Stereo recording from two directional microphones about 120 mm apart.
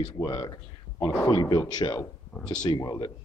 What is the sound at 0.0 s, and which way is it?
Speech, 40° left (ahead or behind).